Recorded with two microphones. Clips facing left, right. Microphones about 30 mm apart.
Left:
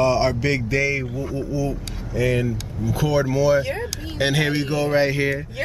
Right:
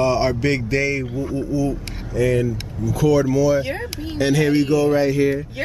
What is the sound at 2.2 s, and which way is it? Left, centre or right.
Speech, centre.